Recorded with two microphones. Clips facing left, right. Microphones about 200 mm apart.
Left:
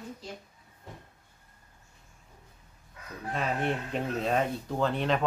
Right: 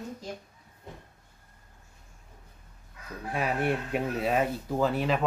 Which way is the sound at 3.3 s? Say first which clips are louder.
Right 2 dB; 10° right (ahead or behind).